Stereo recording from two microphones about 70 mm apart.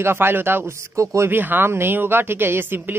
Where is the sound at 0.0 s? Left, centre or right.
Right.